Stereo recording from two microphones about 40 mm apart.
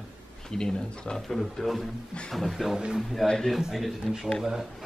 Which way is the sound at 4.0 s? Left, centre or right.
Centre.